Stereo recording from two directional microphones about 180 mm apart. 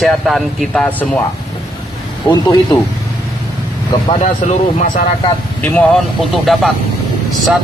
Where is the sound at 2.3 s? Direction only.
20° left (ahead or behind).